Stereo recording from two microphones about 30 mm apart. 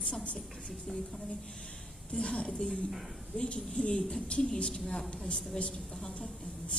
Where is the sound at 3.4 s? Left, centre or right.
Left.